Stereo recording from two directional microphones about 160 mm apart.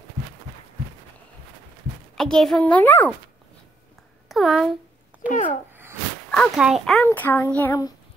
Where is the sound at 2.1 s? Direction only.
Centre (ahead or behind).